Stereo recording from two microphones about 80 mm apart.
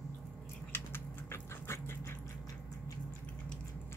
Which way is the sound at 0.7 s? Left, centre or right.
Left.